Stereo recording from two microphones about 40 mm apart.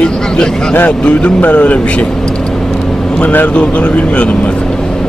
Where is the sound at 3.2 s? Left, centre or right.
Left.